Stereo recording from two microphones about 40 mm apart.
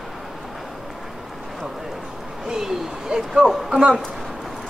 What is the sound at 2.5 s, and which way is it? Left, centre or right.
Speech, centre.